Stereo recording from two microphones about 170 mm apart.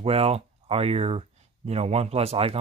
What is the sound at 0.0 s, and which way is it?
Speech, 35° right (ahead or behind).